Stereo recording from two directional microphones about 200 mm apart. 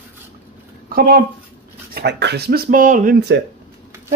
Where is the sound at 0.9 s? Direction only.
50° right (ahead or behind).